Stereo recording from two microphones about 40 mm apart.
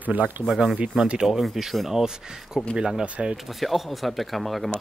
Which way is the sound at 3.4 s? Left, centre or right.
Centre.